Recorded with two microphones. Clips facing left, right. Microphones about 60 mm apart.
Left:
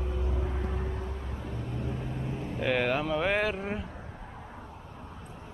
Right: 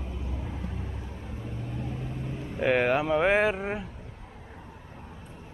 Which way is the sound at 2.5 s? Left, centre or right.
Centre.